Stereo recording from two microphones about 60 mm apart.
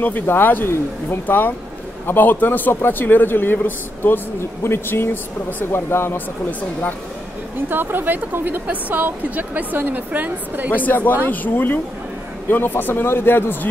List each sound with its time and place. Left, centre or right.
0.0 s a man's voice: left
7.7 s a woman's voice: right
10.9 s a man's voice: left